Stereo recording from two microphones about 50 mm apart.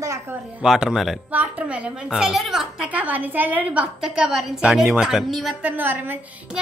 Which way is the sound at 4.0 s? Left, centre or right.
Centre.